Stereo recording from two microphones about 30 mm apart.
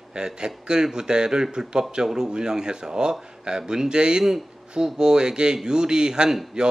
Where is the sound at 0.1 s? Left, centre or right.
Right.